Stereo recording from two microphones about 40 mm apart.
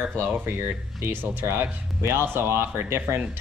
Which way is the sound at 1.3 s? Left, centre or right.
Right.